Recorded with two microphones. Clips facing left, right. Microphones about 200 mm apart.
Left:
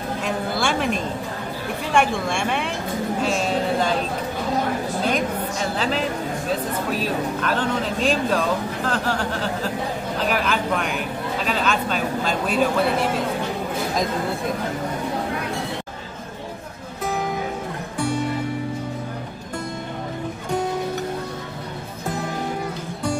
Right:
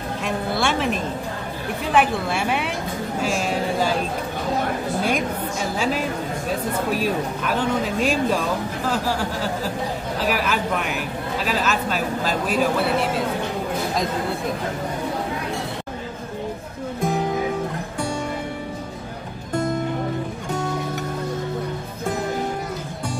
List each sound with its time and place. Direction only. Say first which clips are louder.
0.2 s a sound: right 1 dB; centre (ahead or behind)
1.9 s a man's voice: right 1 dB; 5° right (ahead or behind)
5.0 s a man's voice: left 2 dB; 10° right (ahead or behind)